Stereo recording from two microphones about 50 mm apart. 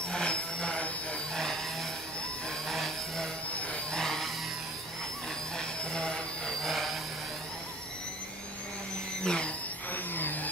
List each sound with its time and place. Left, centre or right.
0.1 s a sound: centre
1.3 s vehicle: centre
2.7 s vehicle: centre
5.6 s vacuum cleaner: centre
6.6 s vacuum cleaner: centre
9.2 s a sound: centre
10.1 s vehicle: left